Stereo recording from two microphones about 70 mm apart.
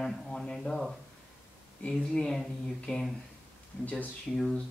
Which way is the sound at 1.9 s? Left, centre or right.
Centre.